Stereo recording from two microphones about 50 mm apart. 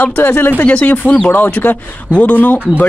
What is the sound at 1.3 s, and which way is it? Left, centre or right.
Speech, left.